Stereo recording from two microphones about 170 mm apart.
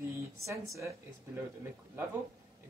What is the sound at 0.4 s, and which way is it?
Speech, 15° right (ahead or behind).